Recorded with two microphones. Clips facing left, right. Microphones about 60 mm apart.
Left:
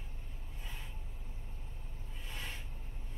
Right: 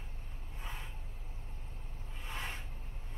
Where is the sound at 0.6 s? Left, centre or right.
Right.